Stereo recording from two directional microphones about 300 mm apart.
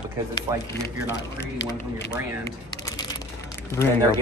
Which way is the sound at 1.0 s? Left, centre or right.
Left.